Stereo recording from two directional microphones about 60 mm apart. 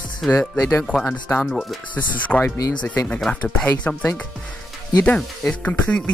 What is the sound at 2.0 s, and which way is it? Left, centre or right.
Speech, left.